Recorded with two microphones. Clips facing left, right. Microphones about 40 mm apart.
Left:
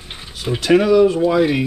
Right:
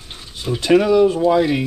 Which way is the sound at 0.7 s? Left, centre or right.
Centre.